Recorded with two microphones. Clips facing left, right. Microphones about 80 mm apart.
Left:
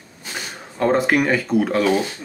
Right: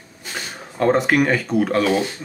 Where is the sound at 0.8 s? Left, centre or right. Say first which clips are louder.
Right 1 dB; centre.